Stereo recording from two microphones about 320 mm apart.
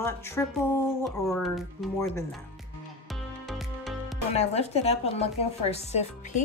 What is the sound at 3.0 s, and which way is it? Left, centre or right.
Music, centre.